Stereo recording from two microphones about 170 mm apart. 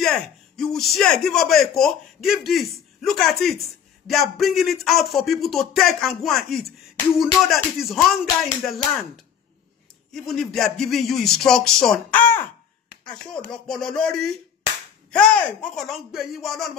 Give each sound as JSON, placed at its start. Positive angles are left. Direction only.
{"t": 0.0, "sound": "a man's voice", "side_deg": 0}
{"t": 13.7, "sound": "a man's voice", "side_deg": 5}